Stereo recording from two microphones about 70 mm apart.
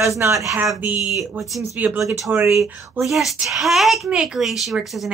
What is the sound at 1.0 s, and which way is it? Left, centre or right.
Speech, centre.